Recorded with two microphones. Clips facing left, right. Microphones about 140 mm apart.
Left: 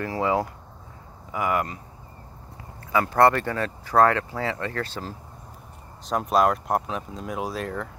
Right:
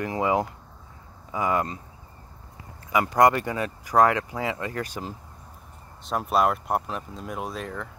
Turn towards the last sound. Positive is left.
turn(degrees=0)  # may be behind; listen again after turning